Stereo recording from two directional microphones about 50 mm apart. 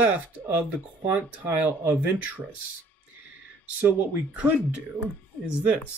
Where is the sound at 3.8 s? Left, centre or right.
Right.